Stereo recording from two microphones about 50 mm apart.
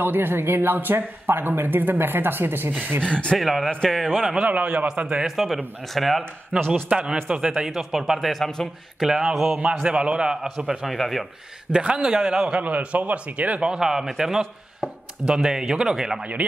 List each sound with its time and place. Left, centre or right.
0.0 s speech: right
3.0 s speech: left
3.3 s speech: centre
4.4 s speech: right
5.3 s speech: centre
6.7 s speech: right; by 8.6 s centre
9.0 s speech: centre
9.8 s speech: centre
10.9 s speech: centre
11.7 s speech: centre
12.5 s speech: right
13.7 s speech: centre
16.4 s speech: right